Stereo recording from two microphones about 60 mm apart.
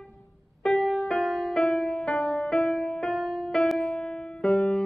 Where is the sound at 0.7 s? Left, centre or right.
Centre.